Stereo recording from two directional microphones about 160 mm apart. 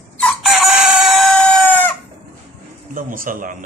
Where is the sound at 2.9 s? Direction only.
60° right (ahead or behind).